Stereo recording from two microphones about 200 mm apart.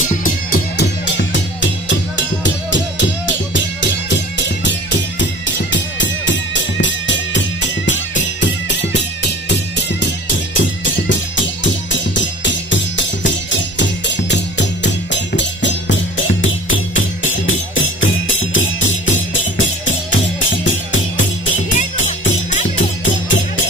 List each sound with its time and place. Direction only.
0.2 s music: 50° left (ahead or behind); by 21.3 s 70° left (ahead or behind)
21.6 s music: 40° left (ahead or behind)
22.8 s music: 65° left (ahead or behind)